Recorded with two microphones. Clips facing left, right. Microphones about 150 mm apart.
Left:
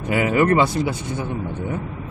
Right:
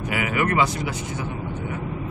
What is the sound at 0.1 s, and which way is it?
Speech, 35° left (ahead or behind).